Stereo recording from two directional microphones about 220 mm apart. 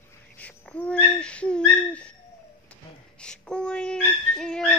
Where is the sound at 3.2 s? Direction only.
5° left (ahead or behind).